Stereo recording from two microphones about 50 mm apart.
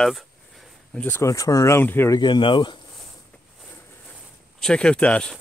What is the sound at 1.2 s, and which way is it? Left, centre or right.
Speech, left.